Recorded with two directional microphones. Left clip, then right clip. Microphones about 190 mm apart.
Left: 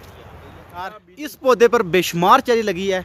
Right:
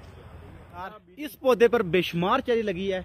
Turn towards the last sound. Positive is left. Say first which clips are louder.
# left 7 dB
turn(degrees=10)  # may be behind; listen again after turning